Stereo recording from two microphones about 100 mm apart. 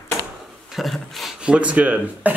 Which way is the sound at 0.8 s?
Centre (ahead or behind).